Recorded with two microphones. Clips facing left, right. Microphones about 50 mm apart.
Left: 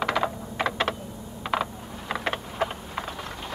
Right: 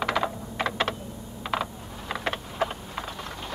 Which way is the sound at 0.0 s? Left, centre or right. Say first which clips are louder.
Left 1 dB; left.